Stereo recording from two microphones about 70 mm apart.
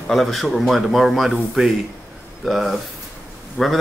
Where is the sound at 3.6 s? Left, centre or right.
Centre.